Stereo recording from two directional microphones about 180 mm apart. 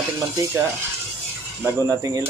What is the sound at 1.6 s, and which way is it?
Speech, 20° right (ahead or behind).